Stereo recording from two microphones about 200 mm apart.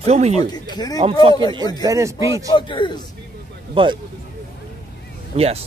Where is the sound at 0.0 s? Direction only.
35° right (ahead or behind).